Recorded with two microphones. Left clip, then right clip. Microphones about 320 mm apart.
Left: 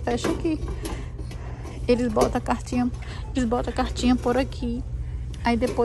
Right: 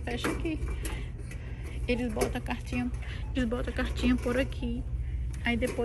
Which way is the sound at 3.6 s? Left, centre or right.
Centre.